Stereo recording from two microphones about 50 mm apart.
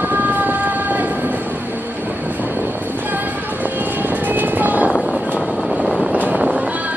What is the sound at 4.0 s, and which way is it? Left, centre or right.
Music, right.